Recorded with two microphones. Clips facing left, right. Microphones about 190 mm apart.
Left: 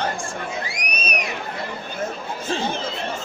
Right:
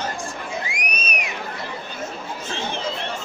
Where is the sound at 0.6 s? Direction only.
35° left (ahead or behind).